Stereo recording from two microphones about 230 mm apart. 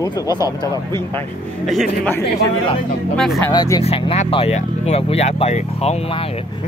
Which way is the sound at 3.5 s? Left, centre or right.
Centre.